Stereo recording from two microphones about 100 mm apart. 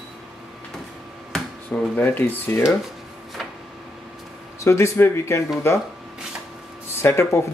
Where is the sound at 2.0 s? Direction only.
20° left (ahead or behind).